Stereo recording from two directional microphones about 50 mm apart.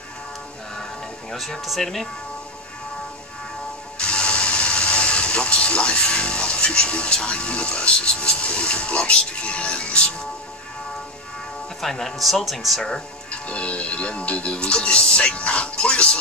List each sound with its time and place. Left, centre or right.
1.3 s a man's voice: centre
4.0 s speech: left
11.8 s a man's voice: centre
12.8 s speech: centre
13.5 s speech: left